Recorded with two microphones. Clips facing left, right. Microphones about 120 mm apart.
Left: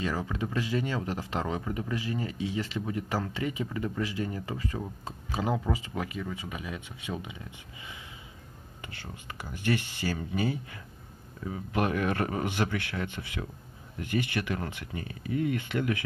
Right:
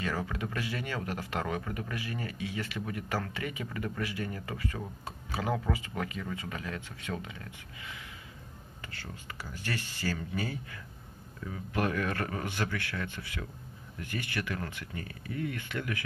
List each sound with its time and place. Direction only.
0.0 s speech: 15° left (ahead or behind)